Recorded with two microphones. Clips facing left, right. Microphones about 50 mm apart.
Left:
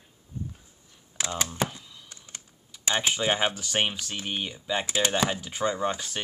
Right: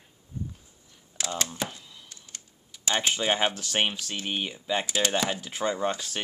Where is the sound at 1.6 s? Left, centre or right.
Centre.